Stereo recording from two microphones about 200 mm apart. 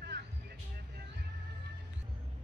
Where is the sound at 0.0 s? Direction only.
55° right (ahead or behind).